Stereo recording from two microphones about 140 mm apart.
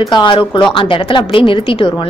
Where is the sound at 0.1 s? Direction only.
35° left (ahead or behind).